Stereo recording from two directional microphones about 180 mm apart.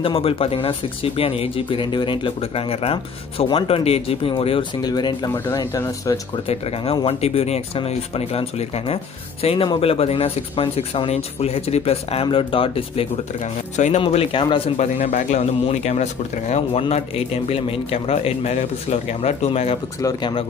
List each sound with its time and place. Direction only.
0.0 s speech: 30° left (ahead or behind)
6.3 s speech: 35° left (ahead or behind)
14.0 s speech: 30° left (ahead or behind)
20.0 s speech: 20° left (ahead or behind)